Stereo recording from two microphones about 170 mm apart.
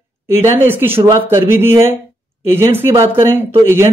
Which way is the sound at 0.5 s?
10° right (ahead or behind).